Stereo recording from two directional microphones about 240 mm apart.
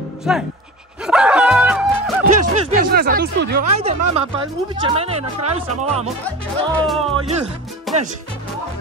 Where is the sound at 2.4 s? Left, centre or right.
Right.